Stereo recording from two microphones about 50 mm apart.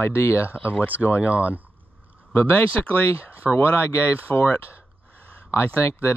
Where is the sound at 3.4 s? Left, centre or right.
Centre.